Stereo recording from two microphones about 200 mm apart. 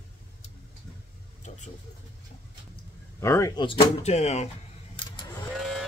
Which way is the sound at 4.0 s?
35° left (ahead or behind).